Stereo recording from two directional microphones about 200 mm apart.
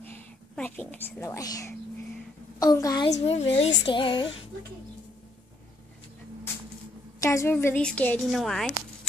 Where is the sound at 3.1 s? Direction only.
30° left (ahead or behind).